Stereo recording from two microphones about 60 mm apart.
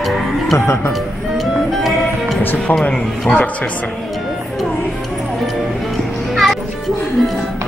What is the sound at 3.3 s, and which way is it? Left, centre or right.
Speech, left.